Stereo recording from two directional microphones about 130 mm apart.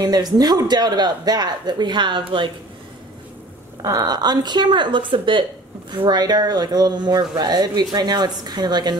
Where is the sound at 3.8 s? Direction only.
30° right (ahead or behind).